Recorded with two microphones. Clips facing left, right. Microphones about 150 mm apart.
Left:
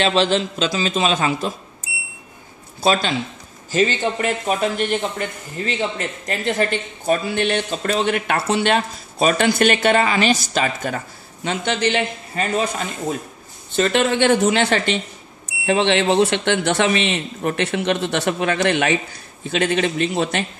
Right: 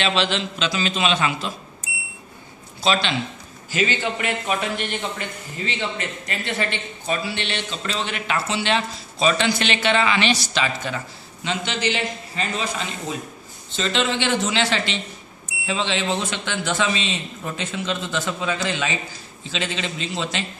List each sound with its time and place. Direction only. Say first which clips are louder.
0.0 s a man's voice: left 5 dB; 40° left (ahead or behind)
2.8 s a man's voice: left 3 dB; 40° left (ahead or behind)